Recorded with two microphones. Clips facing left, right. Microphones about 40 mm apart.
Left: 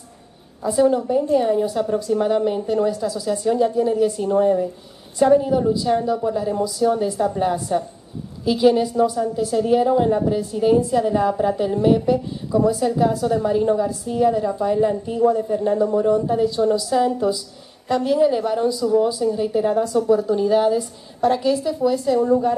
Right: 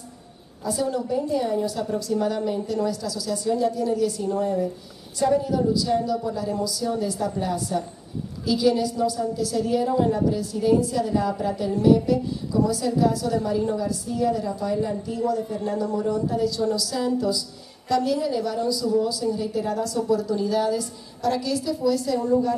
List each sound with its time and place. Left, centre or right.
0.7 s a woman's voice: left